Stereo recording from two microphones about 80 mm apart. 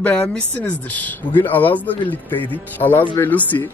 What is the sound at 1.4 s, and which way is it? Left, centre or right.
Speech, left.